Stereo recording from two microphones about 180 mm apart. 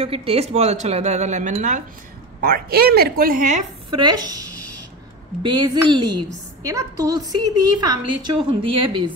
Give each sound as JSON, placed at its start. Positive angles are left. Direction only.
{"t": 0.0, "sound": "speech", "side_deg": -30}
{"t": 2.4, "sound": "a woman's voice", "side_deg": -60}
{"t": 4.0, "sound": "a woman's voice", "side_deg": -25}